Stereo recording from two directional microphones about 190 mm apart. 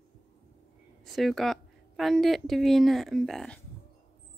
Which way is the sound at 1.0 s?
Centre (ahead or behind).